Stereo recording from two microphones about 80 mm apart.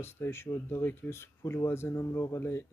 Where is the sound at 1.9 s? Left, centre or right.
Left.